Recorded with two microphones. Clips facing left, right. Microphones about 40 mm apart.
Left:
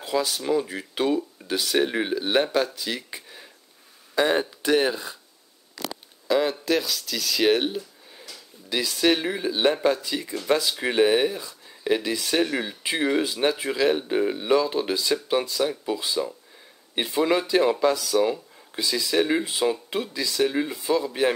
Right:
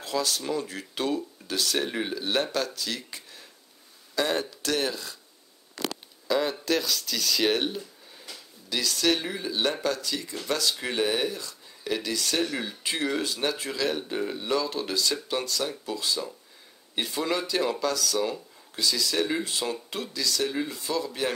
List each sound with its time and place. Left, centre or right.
0.0 s speech: centre
6.2 s speech: centre